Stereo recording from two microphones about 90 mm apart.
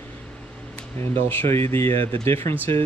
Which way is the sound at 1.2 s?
25° left (ahead or behind).